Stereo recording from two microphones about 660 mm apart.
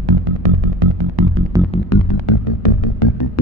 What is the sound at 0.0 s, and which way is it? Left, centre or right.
Music, right.